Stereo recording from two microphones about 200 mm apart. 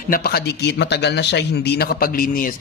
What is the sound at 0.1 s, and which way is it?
Speech, 50° left (ahead or behind).